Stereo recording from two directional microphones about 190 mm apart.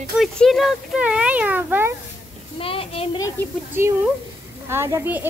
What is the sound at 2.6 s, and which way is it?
Speech, 30° left (ahead or behind).